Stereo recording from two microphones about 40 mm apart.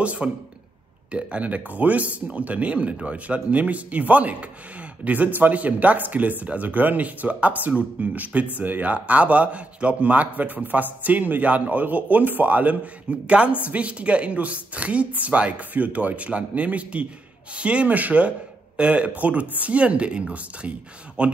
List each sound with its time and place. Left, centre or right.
0.0 s speech: right